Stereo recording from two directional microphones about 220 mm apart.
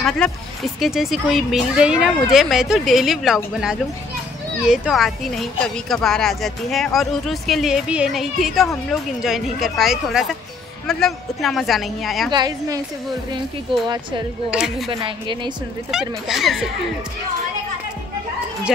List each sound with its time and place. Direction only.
0.2 s a woman's voice: 5° left (ahead or behind)
4.6 s a woman's voice: centre (ahead or behind)
12.3 s a woman's voice: 20° right (ahead or behind)
14.5 s a woman's voice: centre (ahead or behind)
14.9 s a woman's voice: 20° right (ahead or behind)
15.9 s a woman's voice: centre (ahead or behind)